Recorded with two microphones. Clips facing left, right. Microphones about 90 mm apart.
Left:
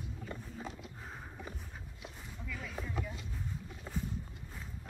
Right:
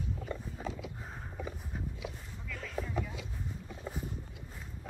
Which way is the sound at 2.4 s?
5° left (ahead or behind).